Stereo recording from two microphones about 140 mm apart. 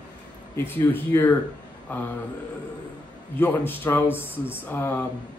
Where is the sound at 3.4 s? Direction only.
15° left (ahead or behind).